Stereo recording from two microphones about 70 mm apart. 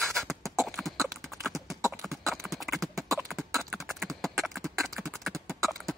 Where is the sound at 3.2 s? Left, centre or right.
Centre.